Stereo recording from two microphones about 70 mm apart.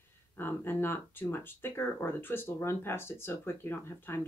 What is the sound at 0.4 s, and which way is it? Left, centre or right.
Speech, left.